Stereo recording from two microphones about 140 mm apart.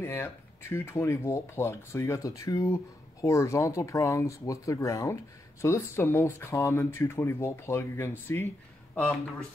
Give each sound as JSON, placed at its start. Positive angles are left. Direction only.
{"t": 0.0, "sound": "speech", "side_deg": 20}